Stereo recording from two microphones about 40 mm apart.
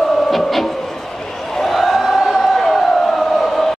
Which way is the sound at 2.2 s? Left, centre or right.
Centre.